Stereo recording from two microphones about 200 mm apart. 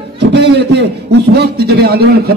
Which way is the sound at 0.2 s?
60° right (ahead or behind).